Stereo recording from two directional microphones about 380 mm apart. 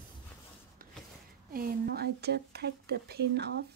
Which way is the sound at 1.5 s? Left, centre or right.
Right.